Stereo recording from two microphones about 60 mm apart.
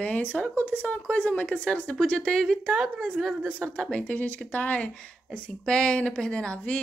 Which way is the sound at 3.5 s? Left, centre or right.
Centre.